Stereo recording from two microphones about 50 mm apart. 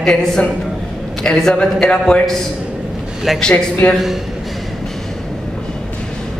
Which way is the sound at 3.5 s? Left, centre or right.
Left.